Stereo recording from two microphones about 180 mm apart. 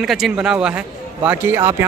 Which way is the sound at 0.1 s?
5° right (ahead or behind).